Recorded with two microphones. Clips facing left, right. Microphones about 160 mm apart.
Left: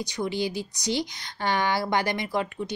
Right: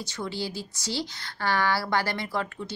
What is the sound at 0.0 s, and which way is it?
Speech, 15° left (ahead or behind).